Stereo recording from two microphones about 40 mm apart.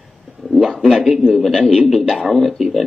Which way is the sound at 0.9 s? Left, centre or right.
Centre.